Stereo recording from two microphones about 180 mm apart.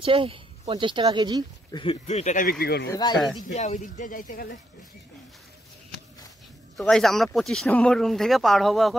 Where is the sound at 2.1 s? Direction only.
40° left (ahead or behind).